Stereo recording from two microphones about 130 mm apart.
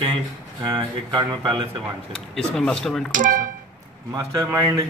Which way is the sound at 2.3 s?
5° left (ahead or behind).